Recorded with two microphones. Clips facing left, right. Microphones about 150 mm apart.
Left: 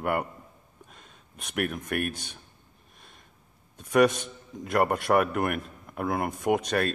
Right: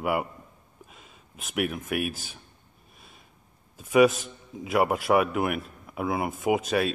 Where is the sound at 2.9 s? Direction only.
5° right (ahead or behind).